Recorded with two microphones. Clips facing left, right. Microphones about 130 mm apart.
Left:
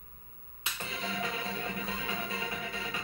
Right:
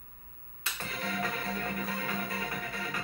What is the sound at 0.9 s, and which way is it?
Music, 50° right (ahead or behind).